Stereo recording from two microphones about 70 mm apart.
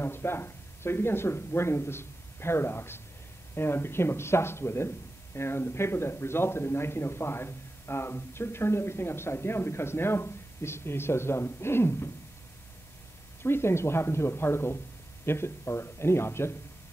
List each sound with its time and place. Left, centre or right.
0.0 s speech: left
13.4 s speech: left